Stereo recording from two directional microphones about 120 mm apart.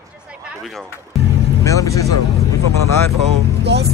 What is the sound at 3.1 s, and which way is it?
Speech, 60° right (ahead or behind).